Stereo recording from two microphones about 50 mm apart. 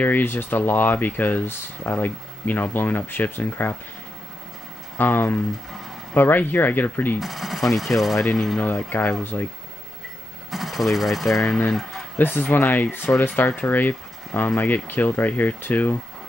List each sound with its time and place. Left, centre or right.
0.0 s speech: left
4.9 s speech: left
7.2 s speech: centre
9.2 s speech: left
10.5 s speech: centre
11.4 s speech: centre
12.2 s speech: left